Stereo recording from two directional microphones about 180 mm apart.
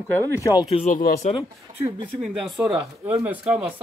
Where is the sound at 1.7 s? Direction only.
45° right (ahead or behind).